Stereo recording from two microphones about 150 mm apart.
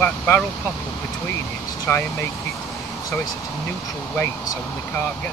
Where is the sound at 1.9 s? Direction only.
15° left (ahead or behind).